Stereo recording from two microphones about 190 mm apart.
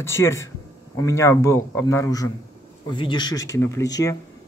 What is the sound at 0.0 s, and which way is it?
Speech, 15° left (ahead or behind).